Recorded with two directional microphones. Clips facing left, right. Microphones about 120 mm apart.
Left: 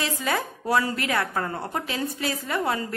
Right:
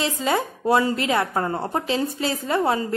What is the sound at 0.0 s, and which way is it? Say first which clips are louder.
A woman's voice: right 4 dB; 25° right (ahead or behind).